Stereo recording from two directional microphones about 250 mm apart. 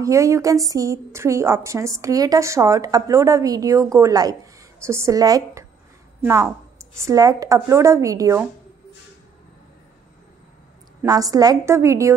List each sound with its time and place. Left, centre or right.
0.0 s a woman's voice: centre
11.0 s a woman's voice: centre